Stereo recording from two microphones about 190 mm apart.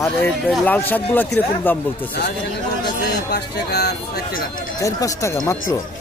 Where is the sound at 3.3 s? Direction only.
60° left (ahead or behind).